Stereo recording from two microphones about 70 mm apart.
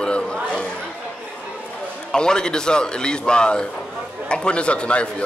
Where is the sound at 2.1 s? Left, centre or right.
Centre.